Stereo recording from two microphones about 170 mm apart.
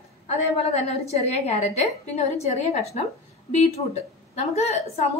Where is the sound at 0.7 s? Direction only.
40° left (ahead or behind).